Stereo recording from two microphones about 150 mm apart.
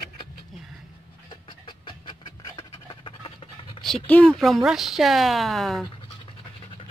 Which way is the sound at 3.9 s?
5° left (ahead or behind).